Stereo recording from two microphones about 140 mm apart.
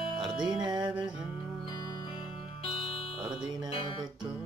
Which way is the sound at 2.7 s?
40° left (ahead or behind).